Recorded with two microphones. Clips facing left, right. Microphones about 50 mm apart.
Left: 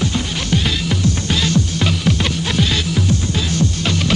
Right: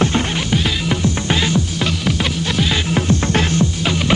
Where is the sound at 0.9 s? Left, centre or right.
Right.